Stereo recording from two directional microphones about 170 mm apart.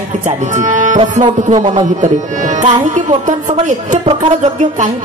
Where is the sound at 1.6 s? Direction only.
25° right (ahead or behind).